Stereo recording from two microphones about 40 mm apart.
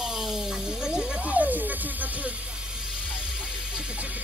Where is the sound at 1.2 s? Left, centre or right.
Right.